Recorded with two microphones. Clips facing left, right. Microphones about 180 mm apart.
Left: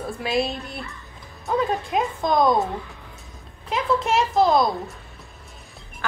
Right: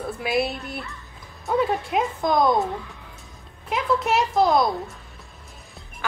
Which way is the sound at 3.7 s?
Centre (ahead or behind).